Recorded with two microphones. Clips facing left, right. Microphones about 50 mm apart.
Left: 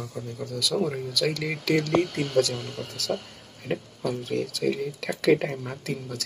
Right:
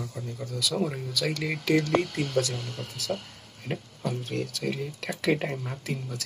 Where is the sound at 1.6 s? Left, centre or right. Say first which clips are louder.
Left 1 dB; left.